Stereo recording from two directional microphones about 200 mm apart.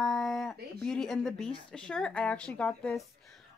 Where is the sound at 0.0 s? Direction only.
Centre (ahead or behind).